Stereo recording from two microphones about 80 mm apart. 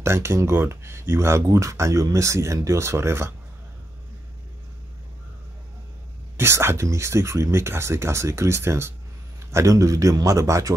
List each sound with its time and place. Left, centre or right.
0.0 s speech: right
6.3 s speech: right